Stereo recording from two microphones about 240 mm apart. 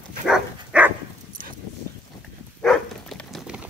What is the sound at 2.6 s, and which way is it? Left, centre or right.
Dog, centre.